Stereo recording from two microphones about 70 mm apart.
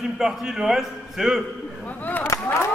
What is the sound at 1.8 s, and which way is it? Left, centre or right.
Speech, left.